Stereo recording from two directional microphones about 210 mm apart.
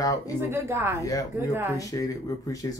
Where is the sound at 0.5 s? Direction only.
10° right (ahead or behind).